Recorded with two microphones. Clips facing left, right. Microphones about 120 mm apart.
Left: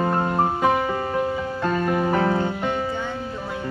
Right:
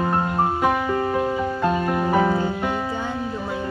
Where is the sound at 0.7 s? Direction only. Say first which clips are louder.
Right 1 dB; 10° left (ahead or behind).